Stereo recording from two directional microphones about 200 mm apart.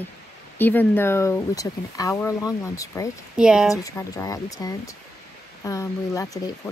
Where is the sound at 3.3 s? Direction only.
5° right (ahead or behind).